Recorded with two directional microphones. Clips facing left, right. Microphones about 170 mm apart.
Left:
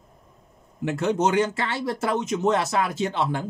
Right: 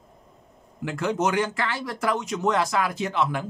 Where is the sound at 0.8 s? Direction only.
25° left (ahead or behind).